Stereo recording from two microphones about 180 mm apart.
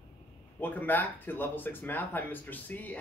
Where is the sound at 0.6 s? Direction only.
10° left (ahead or behind).